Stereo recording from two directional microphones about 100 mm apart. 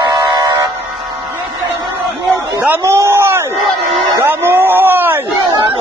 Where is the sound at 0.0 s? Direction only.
45° right (ahead or behind).